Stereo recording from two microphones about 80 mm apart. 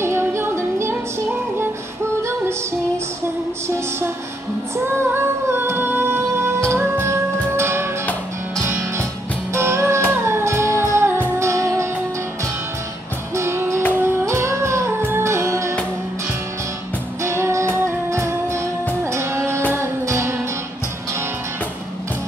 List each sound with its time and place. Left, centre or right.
0.0 s music: right
3.6 s music: right
4.7 s singing: right
6.7 s music: right
13.3 s music: right
17.2 s music: right